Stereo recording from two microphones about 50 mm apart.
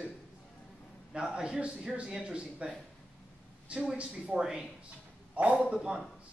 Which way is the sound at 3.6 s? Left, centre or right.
Right.